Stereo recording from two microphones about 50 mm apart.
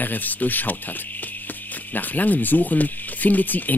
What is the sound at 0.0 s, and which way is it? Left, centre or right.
Speech, left.